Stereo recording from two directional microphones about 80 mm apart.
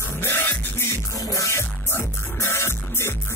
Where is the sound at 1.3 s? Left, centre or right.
Left.